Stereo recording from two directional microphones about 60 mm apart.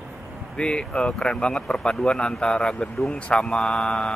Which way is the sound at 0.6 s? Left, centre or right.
Centre.